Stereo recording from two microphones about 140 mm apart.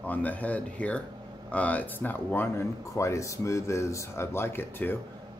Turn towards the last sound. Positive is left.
turn(degrees=15)  # may be behind; listen again after turning